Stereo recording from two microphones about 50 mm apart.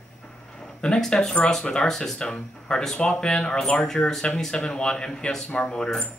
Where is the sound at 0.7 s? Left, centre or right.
Centre.